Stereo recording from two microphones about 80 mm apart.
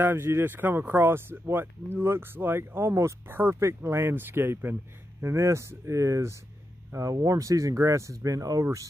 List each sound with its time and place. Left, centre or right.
0.0 s speech: right